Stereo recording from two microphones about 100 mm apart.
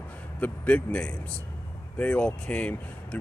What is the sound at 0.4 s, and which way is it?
Speech, 10° left (ahead or behind).